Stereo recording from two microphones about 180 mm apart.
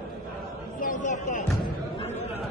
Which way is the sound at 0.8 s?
45° left (ahead or behind).